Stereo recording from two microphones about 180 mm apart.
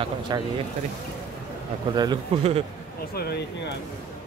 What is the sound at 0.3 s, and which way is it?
Speech, 20° right (ahead or behind).